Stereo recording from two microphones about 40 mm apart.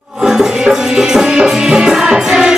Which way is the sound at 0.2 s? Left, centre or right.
Centre.